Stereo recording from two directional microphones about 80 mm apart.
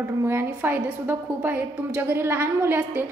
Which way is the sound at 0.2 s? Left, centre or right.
Right.